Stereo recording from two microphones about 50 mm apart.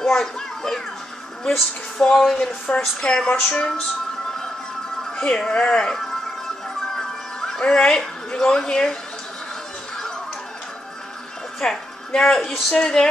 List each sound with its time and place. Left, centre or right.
0.0 s music: centre
1.5 s speech: centre
5.1 s speech: centre
6.9 s music: centre
11.6 s a woman's voice: centre